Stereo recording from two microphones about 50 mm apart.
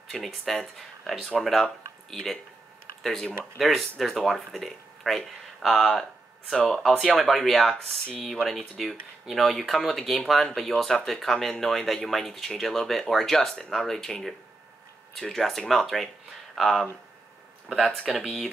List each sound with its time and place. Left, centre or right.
0.1 s speech: centre
7.7 s speech: centre
8.5 s speech: centre
15.1 s speech: centre